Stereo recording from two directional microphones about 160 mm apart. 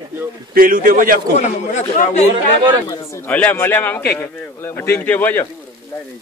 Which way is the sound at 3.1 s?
10° left (ahead or behind).